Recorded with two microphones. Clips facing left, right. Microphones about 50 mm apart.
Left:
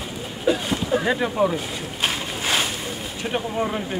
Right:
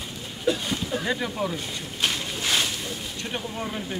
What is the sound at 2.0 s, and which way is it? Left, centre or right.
Boat, centre.